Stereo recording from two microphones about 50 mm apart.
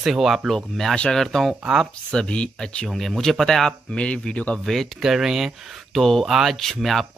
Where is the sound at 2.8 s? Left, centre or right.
Centre.